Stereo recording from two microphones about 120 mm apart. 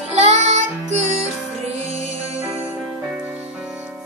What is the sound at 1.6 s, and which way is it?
Music, 60° right (ahead or behind).